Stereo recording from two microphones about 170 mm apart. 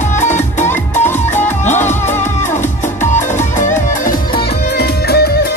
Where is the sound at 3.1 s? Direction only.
45° left (ahead or behind).